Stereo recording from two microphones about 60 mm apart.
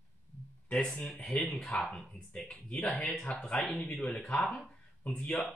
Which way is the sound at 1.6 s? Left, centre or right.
Centre.